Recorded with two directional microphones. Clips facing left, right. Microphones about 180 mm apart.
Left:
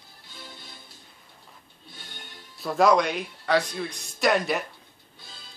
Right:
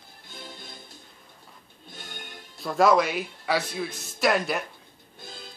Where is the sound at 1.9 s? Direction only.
50° right (ahead or behind).